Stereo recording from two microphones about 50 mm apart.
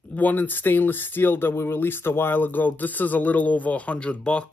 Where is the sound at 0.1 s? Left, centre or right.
Left.